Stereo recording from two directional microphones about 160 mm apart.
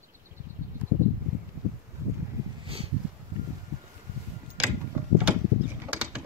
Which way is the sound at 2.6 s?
35° right (ahead or behind).